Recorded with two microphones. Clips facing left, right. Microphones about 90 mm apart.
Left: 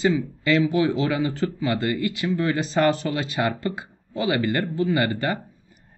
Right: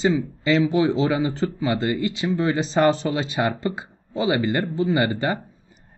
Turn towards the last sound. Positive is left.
turn(degrees=-20)  # may be behind; listen again after turning